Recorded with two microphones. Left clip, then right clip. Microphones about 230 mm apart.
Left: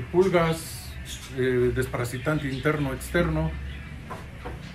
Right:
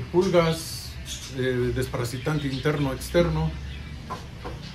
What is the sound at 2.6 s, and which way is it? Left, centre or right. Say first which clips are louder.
Speech: right 1 dB; centre.